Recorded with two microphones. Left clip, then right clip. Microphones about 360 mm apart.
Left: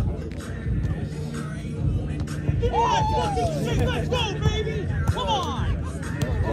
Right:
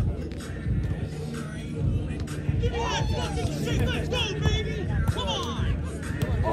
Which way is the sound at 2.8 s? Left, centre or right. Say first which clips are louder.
Left 9 dB; centre.